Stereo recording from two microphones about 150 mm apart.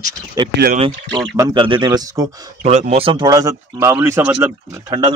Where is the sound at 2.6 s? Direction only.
45° right (ahead or behind); by 4.2 s 20° right (ahead or behind).